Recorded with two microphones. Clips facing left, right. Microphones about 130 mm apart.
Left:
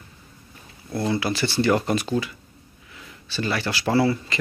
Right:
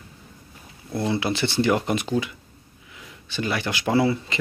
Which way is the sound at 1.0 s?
20° right (ahead or behind).